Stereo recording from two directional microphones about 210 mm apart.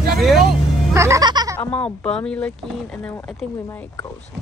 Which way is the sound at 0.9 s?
15° right (ahead or behind).